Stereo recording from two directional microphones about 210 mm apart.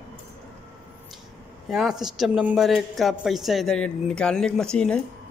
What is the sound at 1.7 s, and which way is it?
A man's voice, centre (ahead or behind).